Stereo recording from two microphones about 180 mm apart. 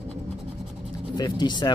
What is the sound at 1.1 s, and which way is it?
Speech, 25° left (ahead or behind).